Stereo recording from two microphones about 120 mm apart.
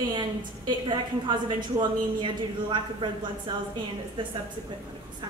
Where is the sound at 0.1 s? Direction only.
35° right (ahead or behind).